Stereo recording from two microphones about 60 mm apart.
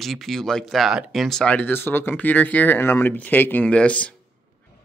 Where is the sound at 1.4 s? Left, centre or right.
Left.